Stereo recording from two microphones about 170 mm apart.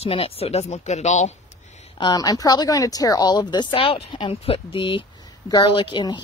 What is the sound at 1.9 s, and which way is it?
Speech, 25° left (ahead or behind).